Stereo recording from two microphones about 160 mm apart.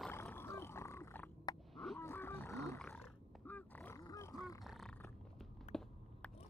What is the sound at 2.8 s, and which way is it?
Roaring cats, 10° left (ahead or behind).